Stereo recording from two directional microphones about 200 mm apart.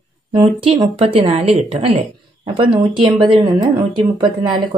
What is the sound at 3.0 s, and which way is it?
Speech, 25° right (ahead or behind).